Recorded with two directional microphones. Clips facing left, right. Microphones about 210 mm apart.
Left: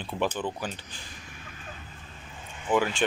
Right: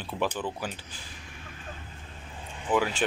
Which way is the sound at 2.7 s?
20° left (ahead or behind).